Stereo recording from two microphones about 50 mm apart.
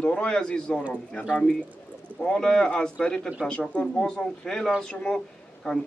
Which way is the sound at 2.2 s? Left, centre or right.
Centre.